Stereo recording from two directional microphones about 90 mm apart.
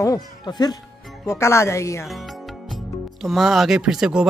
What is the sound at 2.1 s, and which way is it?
Music, centre (ahead or behind).